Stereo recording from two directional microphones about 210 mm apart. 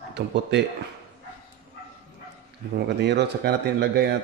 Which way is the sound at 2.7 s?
55° right (ahead or behind).